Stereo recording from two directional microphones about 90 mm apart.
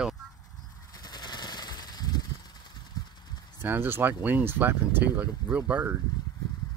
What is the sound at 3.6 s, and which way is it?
Speech, 25° right (ahead or behind).